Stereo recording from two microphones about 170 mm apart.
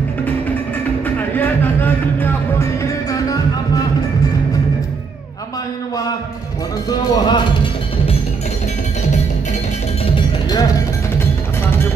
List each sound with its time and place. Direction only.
1.0 s music: 10° left (ahead or behind)
6.9 s music: 25° left (ahead or behind)
10.1 s music: 25° left (ahead or behind)